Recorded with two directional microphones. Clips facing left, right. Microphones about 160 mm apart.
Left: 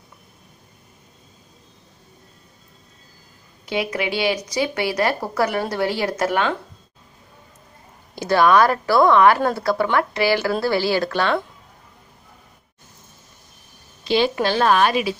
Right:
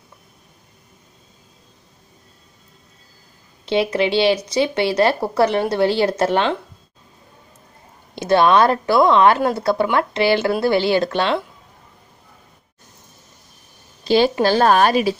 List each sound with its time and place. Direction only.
3.6 s speech: 30° right (ahead or behind)
8.1 s speech: 25° right (ahead or behind)
14.0 s a woman's voice: 40° right (ahead or behind)